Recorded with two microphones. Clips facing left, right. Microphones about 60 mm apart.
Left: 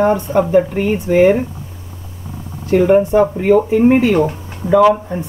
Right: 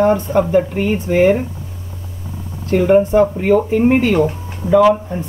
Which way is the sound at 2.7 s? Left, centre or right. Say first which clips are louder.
Left 1 dB; centre.